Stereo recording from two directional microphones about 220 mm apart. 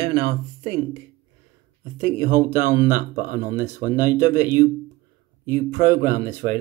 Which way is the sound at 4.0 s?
10° right (ahead or behind).